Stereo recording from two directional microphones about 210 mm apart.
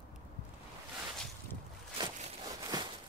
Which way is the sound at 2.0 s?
20° right (ahead or behind).